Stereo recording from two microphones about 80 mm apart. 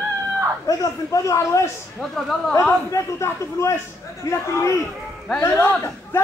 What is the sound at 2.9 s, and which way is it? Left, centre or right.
Speech, left.